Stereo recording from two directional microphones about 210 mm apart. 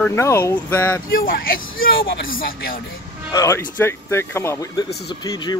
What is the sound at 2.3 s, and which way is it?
Speech, 45° left (ahead or behind).